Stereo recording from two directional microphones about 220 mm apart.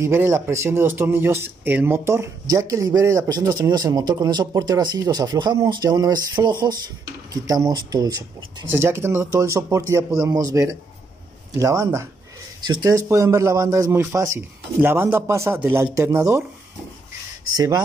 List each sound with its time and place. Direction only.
0.0 s speech: 10° right (ahead or behind)
17.6 s speech: 15° right (ahead or behind)